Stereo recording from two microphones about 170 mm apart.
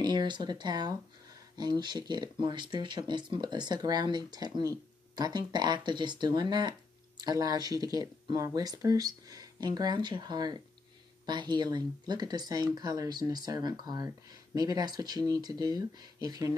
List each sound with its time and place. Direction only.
0.0 s speech: 25° right (ahead or behind)